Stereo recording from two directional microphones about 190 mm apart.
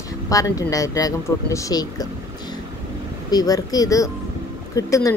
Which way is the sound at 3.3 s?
20° left (ahead or behind).